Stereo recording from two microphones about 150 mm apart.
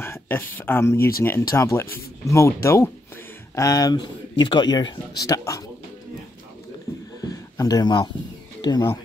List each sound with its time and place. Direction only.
0.0 s speech: 15° left (ahead or behind)
7.2 s a sound: 25° left (ahead or behind)
8.5 s speech: 25° left (ahead or behind)